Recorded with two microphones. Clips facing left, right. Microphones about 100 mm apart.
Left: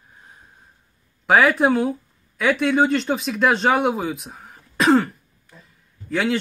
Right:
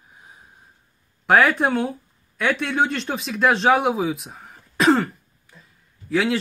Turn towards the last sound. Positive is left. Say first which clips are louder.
# right 1 dB
turn(degrees=0)  # may be behind; listen again after turning